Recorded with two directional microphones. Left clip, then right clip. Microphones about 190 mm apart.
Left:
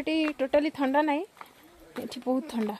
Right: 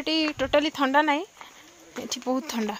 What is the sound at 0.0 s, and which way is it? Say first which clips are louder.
Speech: right 2 dB; centre (ahead or behind).